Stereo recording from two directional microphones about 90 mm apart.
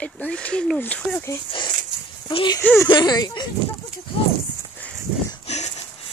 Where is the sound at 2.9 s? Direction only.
55° left (ahead or behind).